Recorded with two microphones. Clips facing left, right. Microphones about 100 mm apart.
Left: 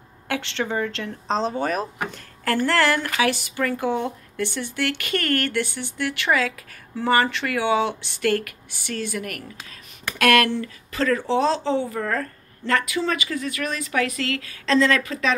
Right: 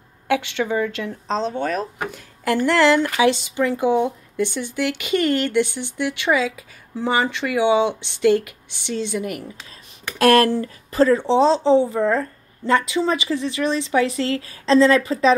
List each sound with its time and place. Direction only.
0.3 s speech: 15° right (ahead or behind)
1.3 s speech: 5° left (ahead or behind)
2.0 s speech: 15° right (ahead or behind)
10.0 s speech: 30° right (ahead or behind)